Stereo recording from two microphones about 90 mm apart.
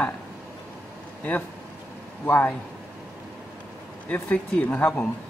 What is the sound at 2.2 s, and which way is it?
Speech, 20° left (ahead or behind).